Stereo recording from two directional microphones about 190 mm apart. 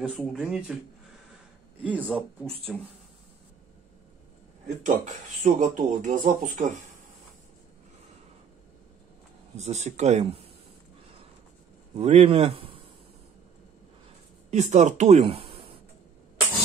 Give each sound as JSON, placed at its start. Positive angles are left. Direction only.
{"t": 0.0, "sound": "speech", "side_deg": -5}
{"t": 1.8, "sound": "speech", "side_deg": -5}
{"t": 5.0, "sound": "speech", "side_deg": -40}
{"t": 9.6, "sound": "speech", "side_deg": -35}
{"t": 11.9, "sound": "a man's voice", "side_deg": -35}
{"t": 14.5, "sound": "speech", "side_deg": -40}